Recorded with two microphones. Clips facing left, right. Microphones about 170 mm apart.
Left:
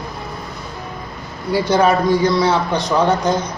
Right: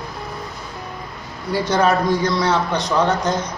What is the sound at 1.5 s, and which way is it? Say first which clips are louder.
A man's voice: left 3 dB; 10° left (ahead or behind).